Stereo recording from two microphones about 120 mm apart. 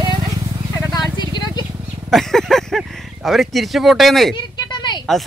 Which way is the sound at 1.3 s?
35° left (ahead or behind).